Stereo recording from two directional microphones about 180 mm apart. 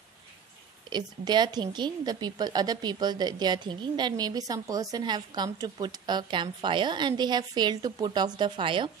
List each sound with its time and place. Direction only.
0.8 s a woman's voice: 25° right (ahead or behind)